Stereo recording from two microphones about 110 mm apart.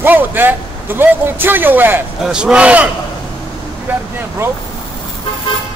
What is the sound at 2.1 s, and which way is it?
Speech, 5° right (ahead or behind).